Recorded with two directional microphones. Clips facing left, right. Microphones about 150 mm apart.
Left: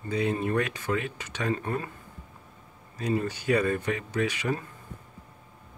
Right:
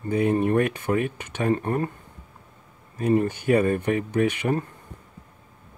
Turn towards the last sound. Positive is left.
turn(degrees=-55)  # may be behind; listen again after turning